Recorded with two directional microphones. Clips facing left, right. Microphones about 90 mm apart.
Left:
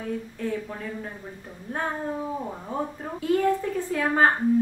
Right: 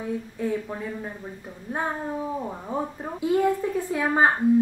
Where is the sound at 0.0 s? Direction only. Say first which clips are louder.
Right 2 dB; 15° right (ahead or behind).